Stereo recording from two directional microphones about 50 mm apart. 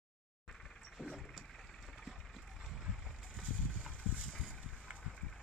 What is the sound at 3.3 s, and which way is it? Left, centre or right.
Vehicle, right.